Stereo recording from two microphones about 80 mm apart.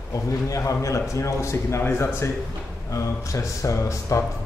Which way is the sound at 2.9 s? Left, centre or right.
Left.